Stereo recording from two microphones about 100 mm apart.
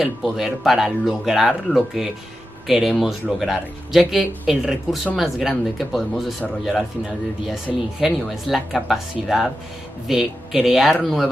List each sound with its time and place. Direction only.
0.0 s speech: centre (ahead or behind)
7.7 s speech: 5° right (ahead or behind)